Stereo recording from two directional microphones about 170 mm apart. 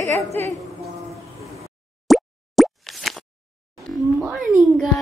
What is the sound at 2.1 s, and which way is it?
Plop, centre (ahead or behind).